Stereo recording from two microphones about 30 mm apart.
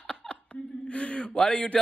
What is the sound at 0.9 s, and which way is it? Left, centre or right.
Speech, left.